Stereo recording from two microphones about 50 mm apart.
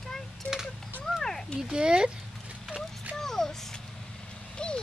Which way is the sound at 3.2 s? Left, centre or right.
Centre.